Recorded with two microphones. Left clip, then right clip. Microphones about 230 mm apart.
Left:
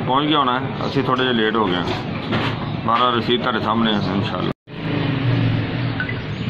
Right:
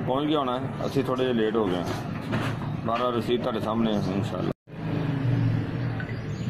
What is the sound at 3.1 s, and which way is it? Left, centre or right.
A man's voice, centre.